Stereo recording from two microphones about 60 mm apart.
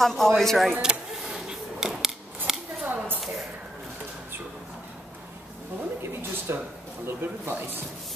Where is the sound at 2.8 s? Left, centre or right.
Right.